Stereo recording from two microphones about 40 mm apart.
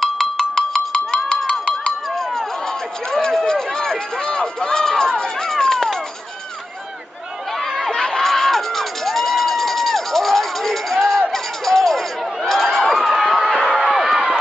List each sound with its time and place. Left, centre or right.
0.0 s music: centre
0.7 s music: left
1.5 s a sound: left
2.1 s run: centre
7.7 s music: centre
12.4 s a sound: centre
13.7 s crowd: centre